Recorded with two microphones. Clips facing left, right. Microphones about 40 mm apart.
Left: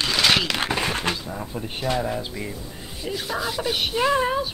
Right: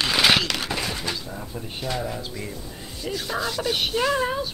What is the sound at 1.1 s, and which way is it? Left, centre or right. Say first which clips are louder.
Speech: left 3 dB; left.